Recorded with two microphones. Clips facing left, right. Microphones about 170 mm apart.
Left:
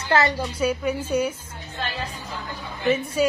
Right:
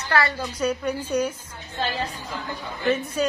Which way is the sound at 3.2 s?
5° left (ahead or behind).